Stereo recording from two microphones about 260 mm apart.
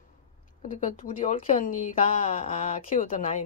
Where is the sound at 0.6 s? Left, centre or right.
Left.